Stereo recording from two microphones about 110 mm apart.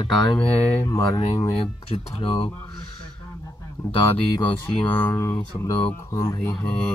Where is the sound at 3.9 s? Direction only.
45° left (ahead or behind).